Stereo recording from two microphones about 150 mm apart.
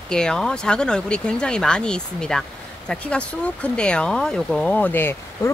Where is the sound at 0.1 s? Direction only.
5° left (ahead or behind).